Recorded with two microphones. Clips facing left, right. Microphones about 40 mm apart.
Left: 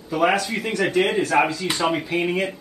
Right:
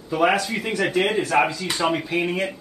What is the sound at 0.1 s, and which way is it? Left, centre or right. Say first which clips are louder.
Speech: even; centre.